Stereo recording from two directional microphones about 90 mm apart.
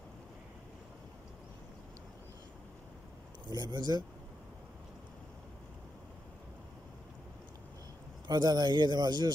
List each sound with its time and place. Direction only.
3.4 s speech: 50° right (ahead or behind)
8.3 s speech: 45° right (ahead or behind)